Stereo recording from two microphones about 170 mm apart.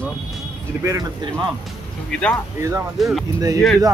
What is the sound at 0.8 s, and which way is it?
Speech, 20° right (ahead or behind).